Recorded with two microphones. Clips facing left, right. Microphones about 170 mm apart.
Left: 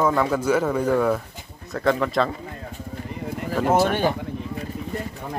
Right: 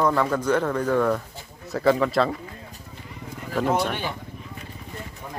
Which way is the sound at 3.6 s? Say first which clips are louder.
Left 1 dB; centre (ahead or behind).